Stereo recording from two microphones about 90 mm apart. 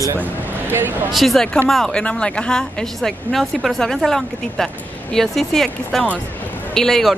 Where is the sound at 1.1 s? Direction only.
Centre (ahead or behind).